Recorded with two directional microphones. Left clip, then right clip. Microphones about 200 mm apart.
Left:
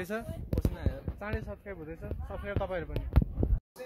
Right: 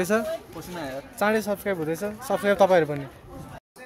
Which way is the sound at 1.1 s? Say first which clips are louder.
Right 16 dB; 25° right (ahead or behind).